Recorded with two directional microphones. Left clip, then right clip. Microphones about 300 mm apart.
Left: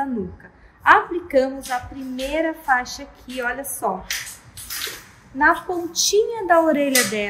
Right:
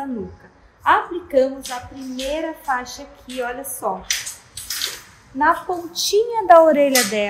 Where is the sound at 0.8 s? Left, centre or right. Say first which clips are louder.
Left 2 dB; centre.